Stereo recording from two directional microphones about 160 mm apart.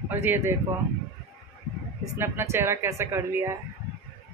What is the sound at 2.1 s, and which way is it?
Speech, 15° right (ahead or behind).